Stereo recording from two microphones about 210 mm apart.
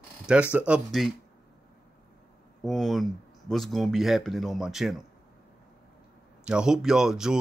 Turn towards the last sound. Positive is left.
turn(degrees=0)  # may be behind; listen again after turning